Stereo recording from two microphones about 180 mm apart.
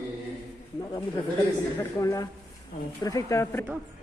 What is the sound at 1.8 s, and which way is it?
Speech, 15° left (ahead or behind).